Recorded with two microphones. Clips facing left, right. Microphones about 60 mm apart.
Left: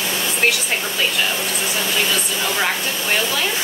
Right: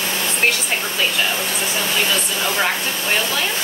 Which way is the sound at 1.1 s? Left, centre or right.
Centre.